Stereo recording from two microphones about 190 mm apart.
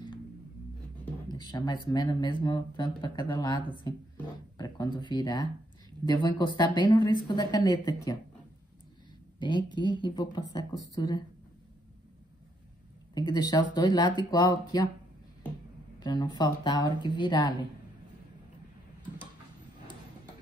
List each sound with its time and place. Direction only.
1.3 s speech: 20° left (ahead or behind)
4.6 s a sound: 20° left (ahead or behind)
4.9 s speech: 20° left (ahead or behind)
9.4 s speech: 25° left (ahead or behind)
13.1 s speech: 20° left (ahead or behind)
16.0 s speech: 20° left (ahead or behind)